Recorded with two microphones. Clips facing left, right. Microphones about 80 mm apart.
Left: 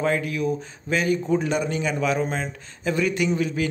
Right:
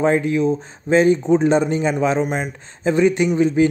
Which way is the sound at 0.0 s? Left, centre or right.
Right.